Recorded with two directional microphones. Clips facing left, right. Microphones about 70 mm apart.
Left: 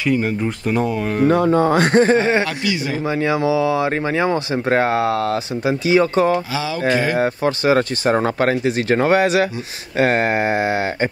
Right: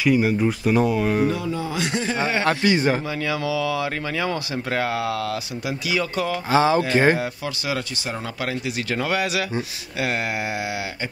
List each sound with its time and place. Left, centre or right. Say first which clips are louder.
0.0 s speech: even; centre
1.2 s speech: left 9 dB; left
2.4 s a man's voice: right 3 dB; right
3.1 s speech: left 7 dB; left
6.5 s a man's voice: right 6 dB; right
7.2 s speech: left 9 dB; left